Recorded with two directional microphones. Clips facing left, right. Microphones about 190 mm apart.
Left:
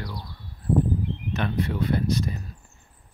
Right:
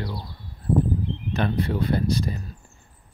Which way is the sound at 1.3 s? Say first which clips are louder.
Right 3 dB; 35° right (ahead or behind).